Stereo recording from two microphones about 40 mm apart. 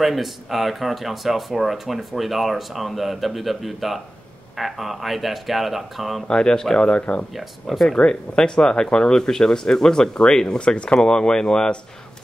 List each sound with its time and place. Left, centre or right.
0.0 s speech: centre
6.2 s speech: left
7.6 s speech: centre
7.9 s speech: centre